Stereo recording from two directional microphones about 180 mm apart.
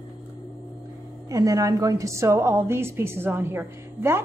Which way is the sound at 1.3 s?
20° right (ahead or behind).